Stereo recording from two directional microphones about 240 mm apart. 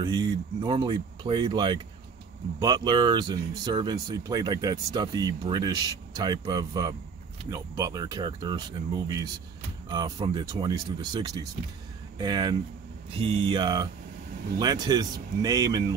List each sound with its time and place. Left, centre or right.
0.0 s speech: centre